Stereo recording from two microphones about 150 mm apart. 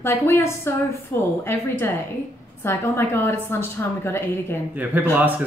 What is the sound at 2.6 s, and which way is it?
A woman's voice, 15° left (ahead or behind).